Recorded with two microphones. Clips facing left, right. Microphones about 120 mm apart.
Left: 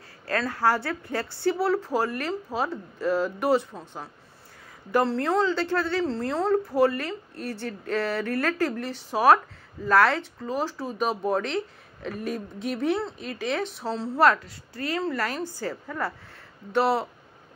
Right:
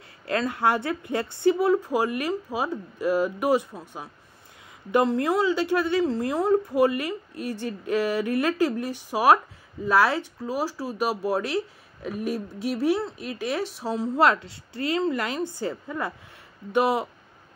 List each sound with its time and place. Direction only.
0.3 s speech: 20° right (ahead or behind)